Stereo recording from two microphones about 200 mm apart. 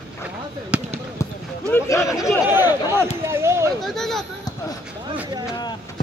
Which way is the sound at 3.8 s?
Centre (ahead or behind).